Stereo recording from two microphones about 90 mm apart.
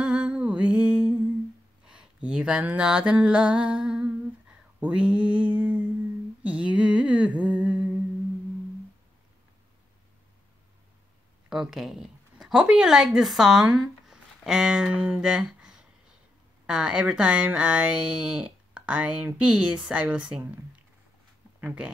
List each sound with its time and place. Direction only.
0.0 s music: 10° right (ahead or behind)
1.9 s a sound: 10° right (ahead or behind)
4.7 s speech: 15° right (ahead or behind)
11.4 s speech: 5° right (ahead or behind)
15.0 s humming: 10° right (ahead or behind)
16.6 s speech: 10° right (ahead or behind)